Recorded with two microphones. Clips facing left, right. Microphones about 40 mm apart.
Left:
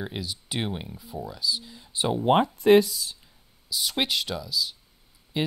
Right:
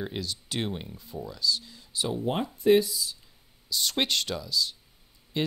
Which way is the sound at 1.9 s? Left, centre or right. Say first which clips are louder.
Left 4 dB; left.